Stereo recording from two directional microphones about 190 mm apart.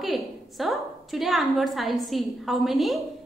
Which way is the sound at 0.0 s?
Centre (ahead or behind).